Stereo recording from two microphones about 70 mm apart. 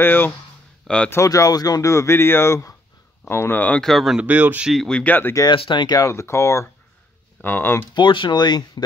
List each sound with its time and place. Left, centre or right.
0.0 s speech: left
0.8 s speech: centre
1.2 s speech: left
1.9 s speech: left
3.8 s speech: centre
4.2 s speech: right
5.0 s speech: left
5.3 s speech: left
6.0 s speech: left
7.4 s speech: left
7.9 s speech: left